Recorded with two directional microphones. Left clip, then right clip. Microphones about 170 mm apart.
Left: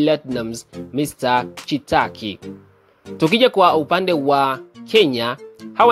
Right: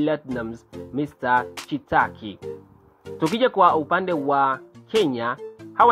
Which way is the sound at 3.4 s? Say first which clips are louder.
Left 3 dB; 40° left (ahead or behind).